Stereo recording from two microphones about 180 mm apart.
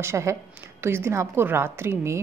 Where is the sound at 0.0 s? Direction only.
15° right (ahead or behind).